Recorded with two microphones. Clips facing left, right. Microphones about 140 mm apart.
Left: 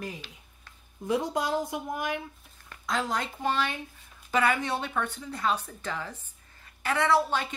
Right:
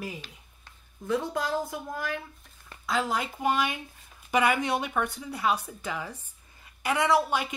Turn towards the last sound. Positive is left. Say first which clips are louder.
# even
turn(degrees=-15)  # may be behind; listen again after turning